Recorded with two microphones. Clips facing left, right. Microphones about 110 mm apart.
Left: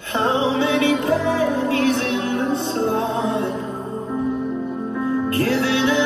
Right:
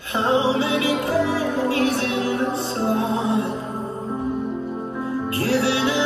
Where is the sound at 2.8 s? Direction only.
30° left (ahead or behind).